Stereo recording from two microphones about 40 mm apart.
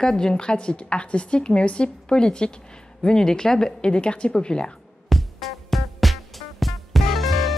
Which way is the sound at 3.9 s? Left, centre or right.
Left.